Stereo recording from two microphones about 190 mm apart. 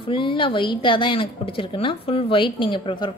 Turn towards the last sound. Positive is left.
turn(degrees=25)  # may be behind; listen again after turning